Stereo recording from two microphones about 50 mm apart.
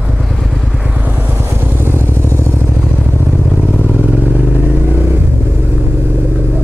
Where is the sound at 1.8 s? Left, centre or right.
Right.